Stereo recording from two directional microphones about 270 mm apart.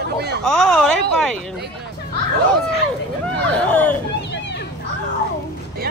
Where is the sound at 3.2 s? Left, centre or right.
Centre.